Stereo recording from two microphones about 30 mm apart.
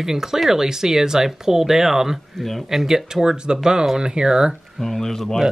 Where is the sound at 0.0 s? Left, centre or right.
Centre.